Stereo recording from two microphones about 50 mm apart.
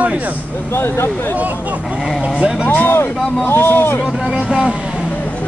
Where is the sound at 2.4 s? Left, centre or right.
Centre.